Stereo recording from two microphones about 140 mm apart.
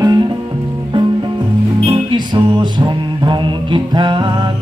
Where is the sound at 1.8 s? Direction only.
35° right (ahead or behind).